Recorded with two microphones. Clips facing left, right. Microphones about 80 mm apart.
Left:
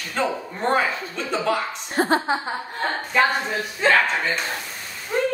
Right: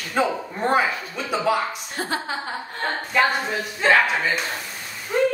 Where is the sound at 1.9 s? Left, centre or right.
Left.